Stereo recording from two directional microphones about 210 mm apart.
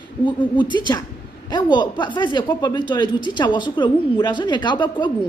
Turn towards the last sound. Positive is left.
turn(degrees=20)  # may be behind; listen again after turning